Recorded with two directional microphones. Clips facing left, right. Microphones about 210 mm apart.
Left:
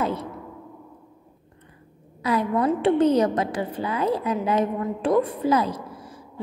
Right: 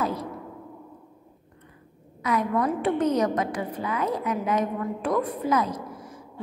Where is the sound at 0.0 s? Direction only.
25° left (ahead or behind).